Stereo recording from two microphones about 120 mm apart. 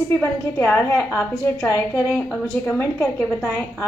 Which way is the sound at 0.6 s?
10° left (ahead or behind).